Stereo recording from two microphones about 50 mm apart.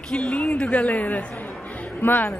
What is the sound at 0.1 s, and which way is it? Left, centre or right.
A woman's voice, left.